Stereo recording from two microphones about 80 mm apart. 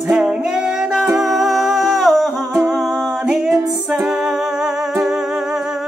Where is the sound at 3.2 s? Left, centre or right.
Centre.